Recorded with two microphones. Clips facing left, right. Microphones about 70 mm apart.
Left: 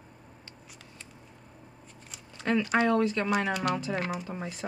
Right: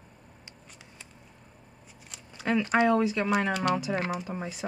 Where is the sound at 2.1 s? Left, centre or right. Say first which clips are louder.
Even; centre.